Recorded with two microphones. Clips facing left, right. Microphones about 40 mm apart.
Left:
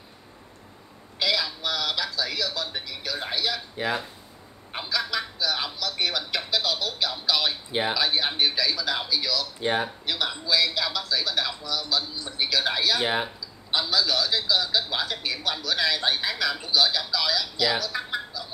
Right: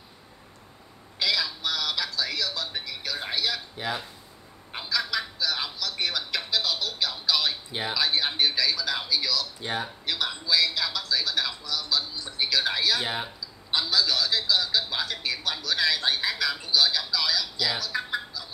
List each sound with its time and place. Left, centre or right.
1.2 s speech: centre
4.7 s a man's voice: centre
9.6 s speech: left
10.0 s a man's voice: centre
13.0 s speech: centre
13.7 s a man's voice: centre